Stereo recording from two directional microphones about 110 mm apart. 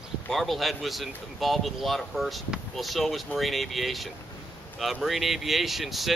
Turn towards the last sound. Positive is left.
turn(degrees=0)  # may be behind; listen again after turning